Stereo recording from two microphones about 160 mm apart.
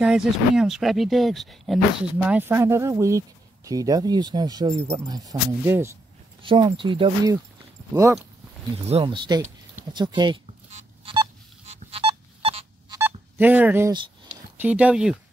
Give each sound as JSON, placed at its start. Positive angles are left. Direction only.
{"t": 0.0, "sound": "speech", "side_deg": -5}
{"t": 2.1, "sound": "speech", "side_deg": -10}
{"t": 6.4, "sound": "speech", "side_deg": -30}
{"t": 8.8, "sound": "speech", "side_deg": -35}
{"t": 11.7, "sound": "telephone dialing", "side_deg": -35}
{"t": 12.9, "sound": "telephone dialing", "side_deg": -15}
{"t": 14.6, "sound": "speech", "side_deg": -10}